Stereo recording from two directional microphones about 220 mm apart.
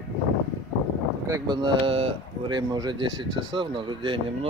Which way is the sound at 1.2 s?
15° right (ahead or behind).